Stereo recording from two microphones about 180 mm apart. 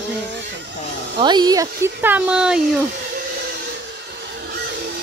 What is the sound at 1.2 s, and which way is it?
Speech, 25° right (ahead or behind).